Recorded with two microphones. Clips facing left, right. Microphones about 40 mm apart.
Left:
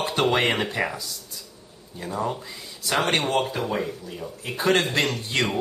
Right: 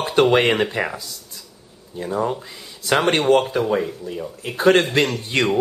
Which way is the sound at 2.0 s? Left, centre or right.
Centre.